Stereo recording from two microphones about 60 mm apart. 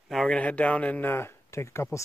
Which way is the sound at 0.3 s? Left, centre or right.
Left.